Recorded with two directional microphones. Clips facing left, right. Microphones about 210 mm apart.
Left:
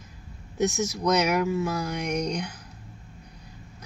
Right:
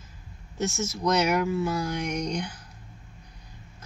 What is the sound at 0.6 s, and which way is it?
Speech, 15° left (ahead or behind).